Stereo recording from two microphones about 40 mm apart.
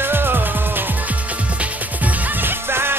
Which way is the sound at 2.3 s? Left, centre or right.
Right.